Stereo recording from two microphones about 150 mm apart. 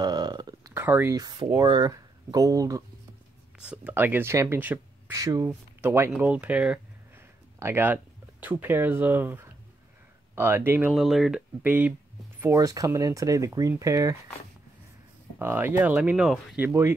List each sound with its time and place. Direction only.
0.0 s a sound: 25° right (ahead or behind)
0.7 s speech: 15° right (ahead or behind)
1.1 s speech: 25° right (ahead or behind)
3.6 s speech: 10° right (ahead or behind)
10.9 s speech: centre (ahead or behind); by 14.1 s 20° right (ahead or behind)
15.3 s speech: 15° right (ahead or behind)